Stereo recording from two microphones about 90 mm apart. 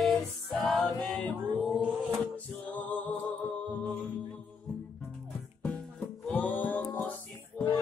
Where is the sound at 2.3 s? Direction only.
15° left (ahead or behind).